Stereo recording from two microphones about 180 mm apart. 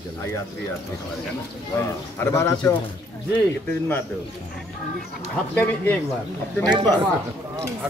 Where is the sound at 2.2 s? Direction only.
15° left (ahead or behind).